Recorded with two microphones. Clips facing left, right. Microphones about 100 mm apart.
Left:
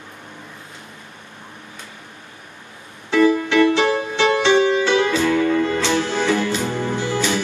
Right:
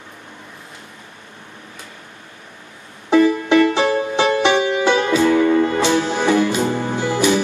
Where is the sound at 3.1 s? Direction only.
20° right (ahead or behind).